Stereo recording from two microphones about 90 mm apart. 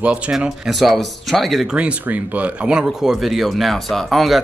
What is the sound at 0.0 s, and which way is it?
Speech, 15° right (ahead or behind).